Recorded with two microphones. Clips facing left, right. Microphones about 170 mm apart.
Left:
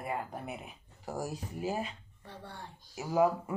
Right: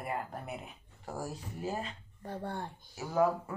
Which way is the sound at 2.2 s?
50° right (ahead or behind).